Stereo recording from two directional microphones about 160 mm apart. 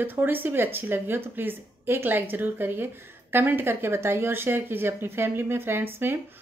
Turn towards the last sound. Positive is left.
turn(degrees=-15)  # may be behind; listen again after turning